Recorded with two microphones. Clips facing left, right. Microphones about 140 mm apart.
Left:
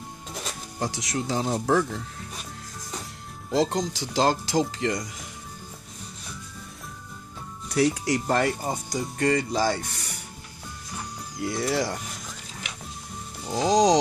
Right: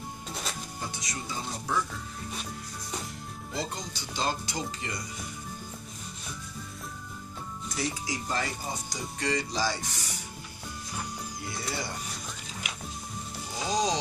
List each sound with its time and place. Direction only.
0.7 s speech: 90° left; by 2.0 s 70° left (ahead or behind)
3.5 s speech: 90° left
7.7 s speech: 65° left (ahead or behind)
11.4 s speech: 90° left
13.6 s speech: 90° left